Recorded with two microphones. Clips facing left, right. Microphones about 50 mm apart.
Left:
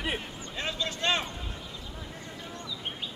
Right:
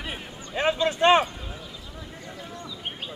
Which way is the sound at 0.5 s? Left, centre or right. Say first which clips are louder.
Right 10 dB; right.